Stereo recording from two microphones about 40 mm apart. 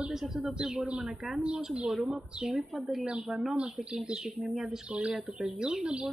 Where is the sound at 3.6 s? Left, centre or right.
Right.